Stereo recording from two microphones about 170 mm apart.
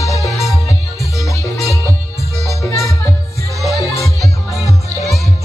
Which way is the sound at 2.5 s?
20° left (ahead or behind).